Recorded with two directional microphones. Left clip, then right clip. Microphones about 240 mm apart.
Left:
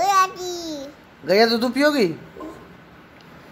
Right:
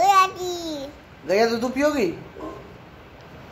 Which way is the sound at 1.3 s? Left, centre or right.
Left.